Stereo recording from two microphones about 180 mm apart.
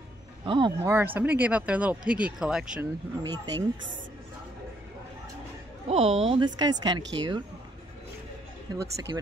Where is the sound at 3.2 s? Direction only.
20° right (ahead or behind).